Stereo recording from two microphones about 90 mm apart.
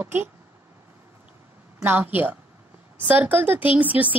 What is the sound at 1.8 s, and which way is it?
A woman's voice, 20° right (ahead or behind).